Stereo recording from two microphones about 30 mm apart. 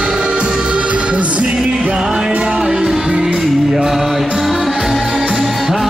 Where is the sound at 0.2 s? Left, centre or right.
Right.